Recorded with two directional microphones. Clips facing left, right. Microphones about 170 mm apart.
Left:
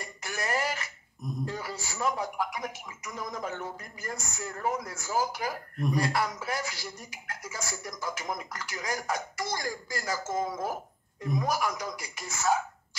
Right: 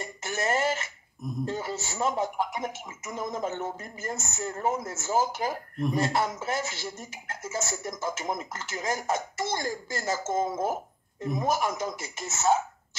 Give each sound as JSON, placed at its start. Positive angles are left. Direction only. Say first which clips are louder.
{"t": 0.0, "sound": "music", "louder": "right 5 dB", "side_deg": -25}
{"t": 1.4, "sound": "speech", "louder": "right 5 dB", "side_deg": -25}